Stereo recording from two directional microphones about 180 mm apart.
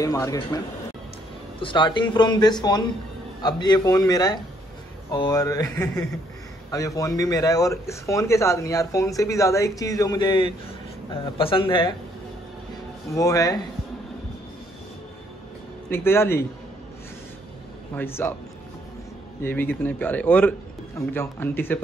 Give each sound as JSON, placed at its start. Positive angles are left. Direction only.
{"t": 0.0, "sound": "speech", "side_deg": 20}
{"t": 1.6, "sound": "a man's voice", "side_deg": 25}
{"t": 13.1, "sound": "speech", "side_deg": 20}
{"t": 15.9, "sound": "a man's voice", "side_deg": 10}
{"t": 17.9, "sound": "a man's voice", "side_deg": 15}
{"t": 19.4, "sound": "a man's voice", "side_deg": 10}